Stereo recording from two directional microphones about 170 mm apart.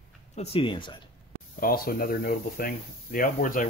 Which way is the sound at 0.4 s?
30° left (ahead or behind).